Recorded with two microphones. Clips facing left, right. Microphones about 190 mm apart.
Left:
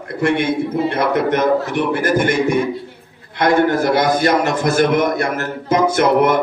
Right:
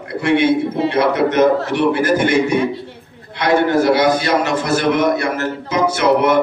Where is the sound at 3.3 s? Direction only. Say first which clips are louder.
Even; 50° left (ahead or behind).